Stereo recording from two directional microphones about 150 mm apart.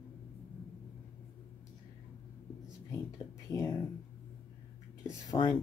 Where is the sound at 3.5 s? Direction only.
20° left (ahead or behind).